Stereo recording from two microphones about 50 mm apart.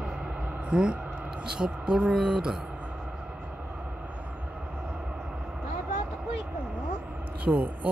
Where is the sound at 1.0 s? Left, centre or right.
Right.